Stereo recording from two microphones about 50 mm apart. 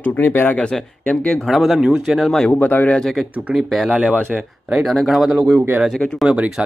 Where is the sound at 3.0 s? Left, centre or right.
Centre.